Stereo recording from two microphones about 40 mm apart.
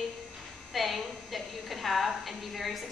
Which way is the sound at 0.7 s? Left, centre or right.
Centre.